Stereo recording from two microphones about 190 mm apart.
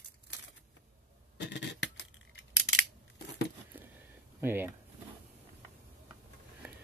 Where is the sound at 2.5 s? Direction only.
65° left (ahead or behind).